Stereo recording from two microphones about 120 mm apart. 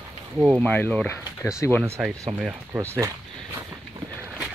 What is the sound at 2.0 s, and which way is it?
Speech, 5° right (ahead or behind).